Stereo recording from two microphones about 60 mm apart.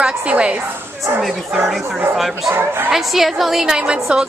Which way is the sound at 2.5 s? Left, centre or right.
Right.